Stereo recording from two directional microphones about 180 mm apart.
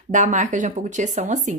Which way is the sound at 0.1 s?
45° right (ahead or behind).